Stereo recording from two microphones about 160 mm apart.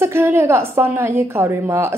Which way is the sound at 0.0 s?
15° right (ahead or behind).